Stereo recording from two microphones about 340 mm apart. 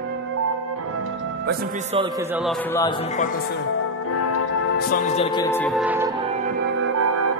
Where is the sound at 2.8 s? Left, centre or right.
Left.